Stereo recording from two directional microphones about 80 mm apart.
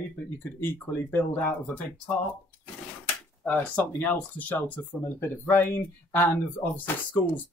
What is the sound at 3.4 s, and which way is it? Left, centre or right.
Speech, centre.